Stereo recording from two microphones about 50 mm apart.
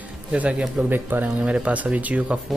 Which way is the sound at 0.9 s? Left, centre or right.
Right.